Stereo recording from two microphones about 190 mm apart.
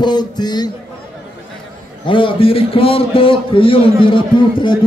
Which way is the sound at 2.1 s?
25° left (ahead or behind).